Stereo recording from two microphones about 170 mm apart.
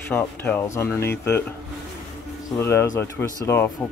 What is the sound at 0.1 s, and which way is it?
Speech, 10° left (ahead or behind).